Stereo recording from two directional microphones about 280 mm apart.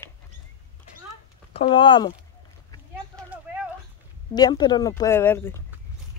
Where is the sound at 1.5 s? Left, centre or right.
Centre.